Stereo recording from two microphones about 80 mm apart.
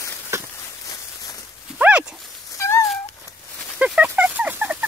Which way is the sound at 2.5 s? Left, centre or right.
Left.